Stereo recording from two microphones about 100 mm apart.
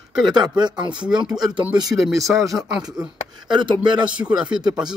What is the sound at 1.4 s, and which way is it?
Speech, 40° right (ahead or behind).